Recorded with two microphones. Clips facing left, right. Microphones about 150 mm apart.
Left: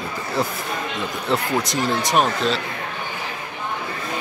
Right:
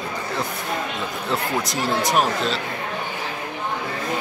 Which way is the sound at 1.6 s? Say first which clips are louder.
Even; centre (ahead or behind).